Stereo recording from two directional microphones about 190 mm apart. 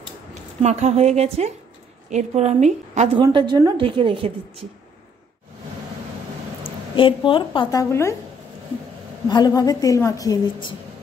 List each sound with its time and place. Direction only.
0.3 s a woman's voice: 35° right (ahead or behind)
3.2 s a woman's voice: 25° right (ahead or behind)
6.6 s speech: 25° left (ahead or behind)
7.9 s a woman's voice: 15° left (ahead or behind)
9.3 s a woman's voice: 20° left (ahead or behind)